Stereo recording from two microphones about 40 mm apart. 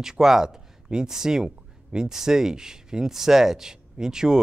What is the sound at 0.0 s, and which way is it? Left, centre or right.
Speech, centre.